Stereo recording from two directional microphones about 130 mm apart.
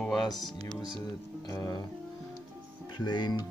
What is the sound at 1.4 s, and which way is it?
Speech, 25° left (ahead or behind).